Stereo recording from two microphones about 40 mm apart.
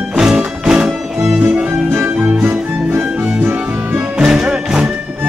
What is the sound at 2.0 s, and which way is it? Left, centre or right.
Music, right.